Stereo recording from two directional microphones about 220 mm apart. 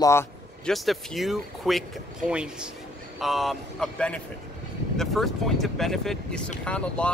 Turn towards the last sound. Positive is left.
turn(degrees=5)  # may be behind; listen again after turning